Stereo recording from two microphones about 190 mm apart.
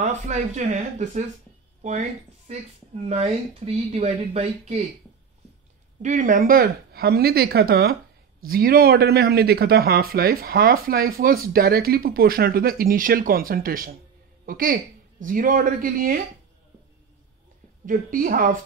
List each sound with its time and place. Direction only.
0.0 s speech: 40° right (ahead or behind)
6.0 s speech: 45° right (ahead or behind)
17.8 s speech: 45° right (ahead or behind)